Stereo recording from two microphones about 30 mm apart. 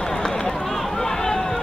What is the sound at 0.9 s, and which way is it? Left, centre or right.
Run, left.